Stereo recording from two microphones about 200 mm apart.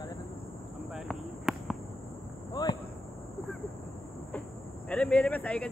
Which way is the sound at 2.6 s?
20° left (ahead or behind).